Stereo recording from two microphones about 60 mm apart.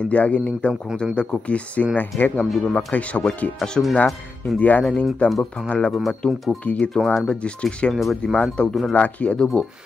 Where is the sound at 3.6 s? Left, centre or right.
Centre.